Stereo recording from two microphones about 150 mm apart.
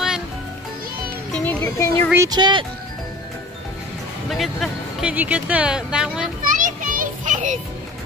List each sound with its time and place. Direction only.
1.3 s music: 10° left (ahead or behind)
1.6 s speech: 20° left (ahead or behind)
2.1 s speech: 25° right (ahead or behind)
4.3 s speech: centre (ahead or behind)
5.1 s speech: 10° right (ahead or behind)
6.4 s children playing: 60° right (ahead or behind)